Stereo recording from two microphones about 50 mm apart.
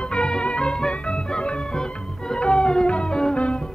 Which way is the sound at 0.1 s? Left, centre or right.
Centre.